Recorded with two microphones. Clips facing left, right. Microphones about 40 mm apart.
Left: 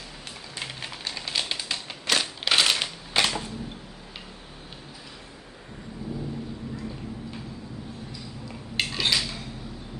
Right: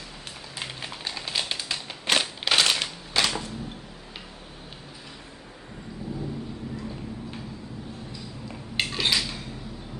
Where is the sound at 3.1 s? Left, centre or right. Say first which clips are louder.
Left 1 dB; left.